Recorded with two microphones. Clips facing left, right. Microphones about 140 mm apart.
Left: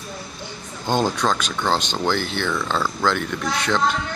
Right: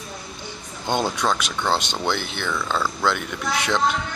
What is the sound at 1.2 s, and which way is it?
Speech, 10° right (ahead or behind).